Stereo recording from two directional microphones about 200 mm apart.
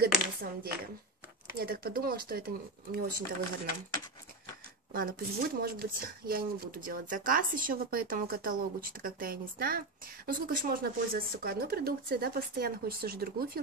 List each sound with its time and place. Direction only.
0.0 s speech: 50° right (ahead or behind)
4.9 s speech: 45° right (ahead or behind)